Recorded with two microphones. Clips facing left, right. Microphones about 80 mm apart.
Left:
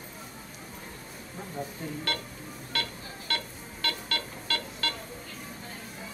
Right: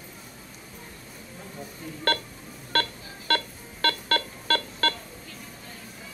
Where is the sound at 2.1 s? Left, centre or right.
Right.